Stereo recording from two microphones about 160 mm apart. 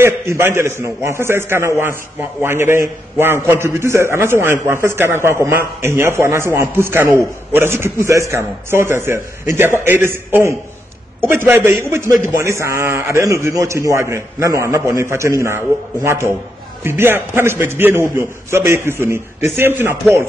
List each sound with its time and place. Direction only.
0.0 s a man's voice: 15° right (ahead or behind)